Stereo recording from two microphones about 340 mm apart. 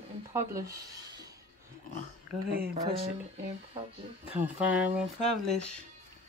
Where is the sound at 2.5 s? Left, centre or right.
Right.